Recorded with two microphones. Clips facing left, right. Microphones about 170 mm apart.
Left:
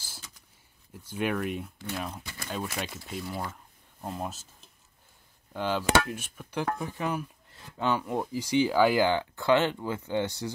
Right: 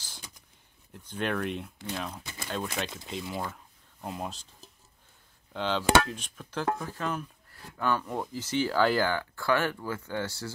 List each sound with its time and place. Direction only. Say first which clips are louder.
0.9 s speech: left 1 dB; 10° left (ahead or behind)
5.5 s speech: right 1 dB; 10° left (ahead or behind)